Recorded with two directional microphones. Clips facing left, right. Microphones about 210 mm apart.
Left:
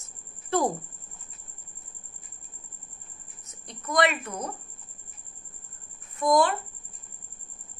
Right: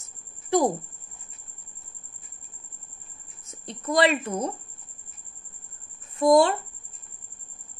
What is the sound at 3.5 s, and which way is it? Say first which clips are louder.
A woman's voice: right 5 dB; 25° right (ahead or behind).